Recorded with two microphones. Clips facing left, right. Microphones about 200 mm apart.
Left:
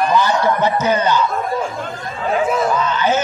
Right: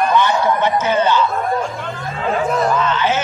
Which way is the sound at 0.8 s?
15° left (ahead or behind).